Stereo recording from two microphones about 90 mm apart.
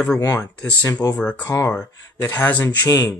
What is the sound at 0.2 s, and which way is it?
Speech, 40° left (ahead or behind).